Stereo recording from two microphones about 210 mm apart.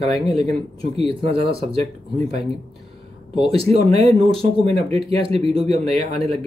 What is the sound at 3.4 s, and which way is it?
Speech, 25° right (ahead or behind).